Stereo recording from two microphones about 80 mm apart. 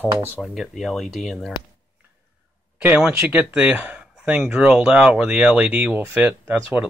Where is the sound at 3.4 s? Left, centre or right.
Centre.